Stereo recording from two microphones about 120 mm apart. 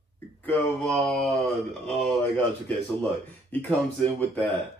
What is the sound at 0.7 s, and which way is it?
Speech, 5° left (ahead or behind).